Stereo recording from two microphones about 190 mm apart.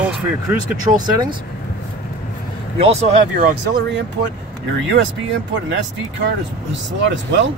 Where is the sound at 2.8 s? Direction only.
35° right (ahead or behind).